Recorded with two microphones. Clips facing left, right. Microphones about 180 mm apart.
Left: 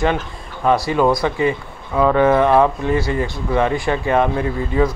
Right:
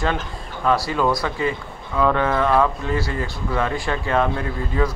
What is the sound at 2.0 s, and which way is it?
Speech, 15° left (ahead or behind).